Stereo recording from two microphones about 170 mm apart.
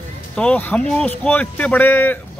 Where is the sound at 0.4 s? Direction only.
10° left (ahead or behind).